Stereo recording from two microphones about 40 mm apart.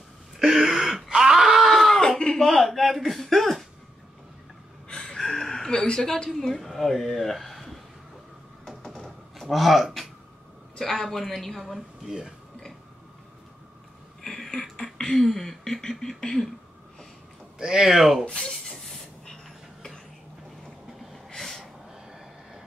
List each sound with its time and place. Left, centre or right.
0.4 s throat clearing: centre
1.7 s a sound: centre
5.0 s a sound: centre
5.7 s speech: centre
6.3 s a woman's voice: centre
8.6 s typing: centre
9.5 s a woman's voice: centre
11.6 s speech: centre
14.2 s a sound: centre
17.6 s speech: centre
18.2 s speech: left
21.4 s a sound: centre